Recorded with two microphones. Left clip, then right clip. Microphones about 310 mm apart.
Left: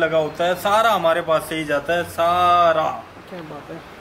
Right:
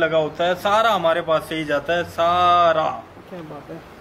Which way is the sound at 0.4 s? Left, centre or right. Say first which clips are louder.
Left 1 dB; centre.